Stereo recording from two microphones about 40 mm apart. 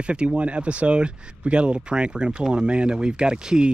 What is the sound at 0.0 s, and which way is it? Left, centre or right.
Speech, right.